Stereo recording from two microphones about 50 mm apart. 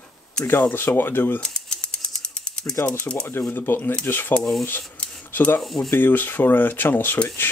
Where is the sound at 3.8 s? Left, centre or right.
Left.